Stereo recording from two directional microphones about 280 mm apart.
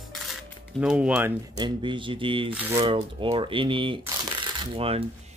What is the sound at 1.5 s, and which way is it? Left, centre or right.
Speech, centre.